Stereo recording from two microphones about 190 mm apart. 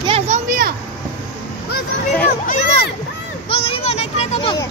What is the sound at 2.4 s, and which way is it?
Speech, 35° left (ahead or behind).